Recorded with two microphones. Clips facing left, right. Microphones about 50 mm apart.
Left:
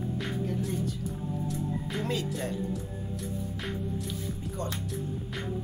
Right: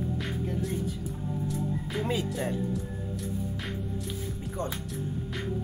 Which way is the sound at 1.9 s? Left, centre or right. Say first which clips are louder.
Right 2 dB; centre.